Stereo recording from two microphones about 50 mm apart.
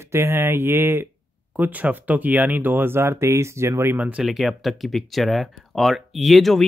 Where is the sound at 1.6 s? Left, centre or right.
Right.